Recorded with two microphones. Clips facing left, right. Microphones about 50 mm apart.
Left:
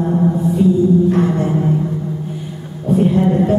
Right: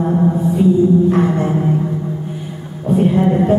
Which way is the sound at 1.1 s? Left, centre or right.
Centre.